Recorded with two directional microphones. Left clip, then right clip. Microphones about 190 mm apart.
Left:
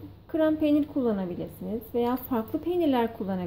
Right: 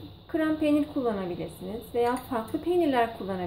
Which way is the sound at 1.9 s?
30° left (ahead or behind).